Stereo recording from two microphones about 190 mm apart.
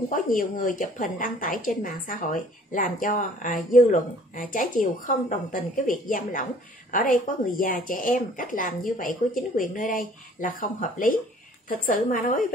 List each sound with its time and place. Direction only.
0.1 s a woman's voice: 45° left (ahead or behind)